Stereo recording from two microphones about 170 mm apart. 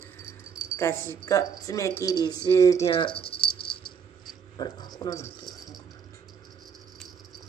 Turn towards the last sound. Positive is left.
turn(degrees=0)  # may be behind; listen again after turning